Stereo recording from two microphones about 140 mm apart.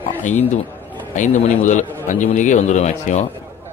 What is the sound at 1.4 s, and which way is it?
A man's voice, 60° left (ahead or behind).